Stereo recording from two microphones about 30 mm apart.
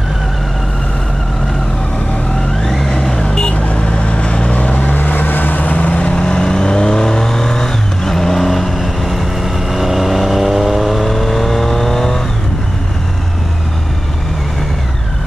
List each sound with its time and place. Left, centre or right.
2.6 s vehicle: centre
3.5 s vehicle: left
3.8 s vehicle: left
4.9 s vehicle: left
6.1 s vehicle: left